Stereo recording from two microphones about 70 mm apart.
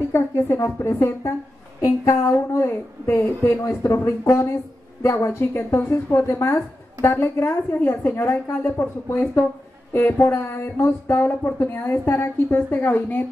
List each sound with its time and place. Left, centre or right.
0.1 s a woman's voice: left